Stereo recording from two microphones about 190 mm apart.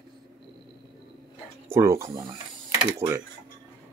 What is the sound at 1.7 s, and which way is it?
Speech, 15° right (ahead or behind).